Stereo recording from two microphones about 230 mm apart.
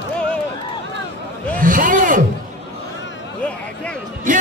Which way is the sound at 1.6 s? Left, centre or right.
Right.